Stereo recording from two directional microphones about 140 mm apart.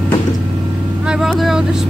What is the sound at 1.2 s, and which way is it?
Speech, centre (ahead or behind).